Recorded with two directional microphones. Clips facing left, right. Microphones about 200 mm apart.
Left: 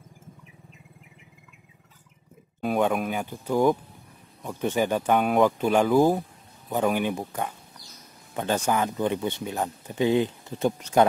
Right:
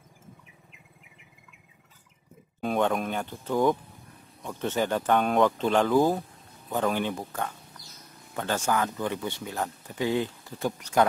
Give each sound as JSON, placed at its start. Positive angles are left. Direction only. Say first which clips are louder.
{"t": 2.6, "sound": "speech", "louder": "left 2 dB", "side_deg": 5}